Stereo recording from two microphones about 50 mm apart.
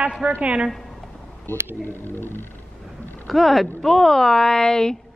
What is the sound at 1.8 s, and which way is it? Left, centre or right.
Speech, left.